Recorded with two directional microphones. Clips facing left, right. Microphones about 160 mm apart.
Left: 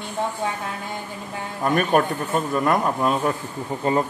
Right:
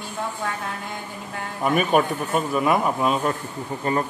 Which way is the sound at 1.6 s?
5° right (ahead or behind).